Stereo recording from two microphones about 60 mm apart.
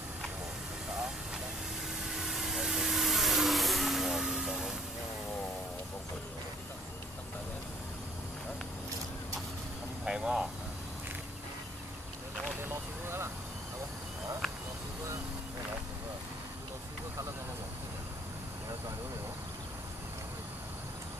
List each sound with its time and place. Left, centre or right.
2.0 s vehicle: centre
10.0 s vehicle: centre
12.6 s vehicle: right